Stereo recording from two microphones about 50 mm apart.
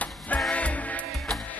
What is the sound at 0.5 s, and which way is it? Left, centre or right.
Music, left.